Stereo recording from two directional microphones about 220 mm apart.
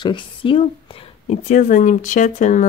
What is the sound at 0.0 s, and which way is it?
Speech, 20° left (ahead or behind).